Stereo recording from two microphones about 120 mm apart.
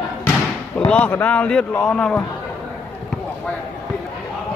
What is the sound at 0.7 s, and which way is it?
A man's voice, 10° left (ahead or behind).